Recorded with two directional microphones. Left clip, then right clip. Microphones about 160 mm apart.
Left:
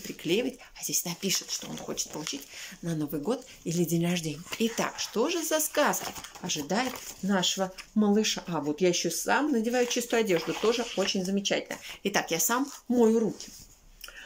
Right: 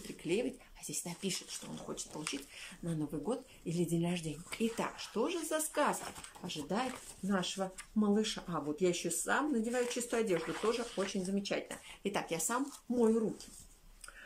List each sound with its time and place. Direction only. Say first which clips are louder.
0.2 s speech: left 7 dB; centre (ahead or behind)
10.4 s speech: left 8 dB; 20° left (ahead or behind)
11.1 s speech: left 9 dB; 5° left (ahead or behind)